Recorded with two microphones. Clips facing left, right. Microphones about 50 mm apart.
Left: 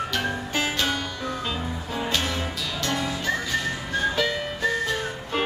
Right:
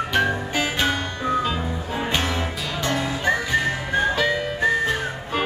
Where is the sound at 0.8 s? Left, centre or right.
Right.